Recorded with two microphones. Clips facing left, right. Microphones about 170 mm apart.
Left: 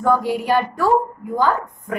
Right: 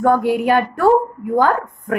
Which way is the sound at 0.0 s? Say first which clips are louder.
Right 4 dB; 55° right (ahead or behind).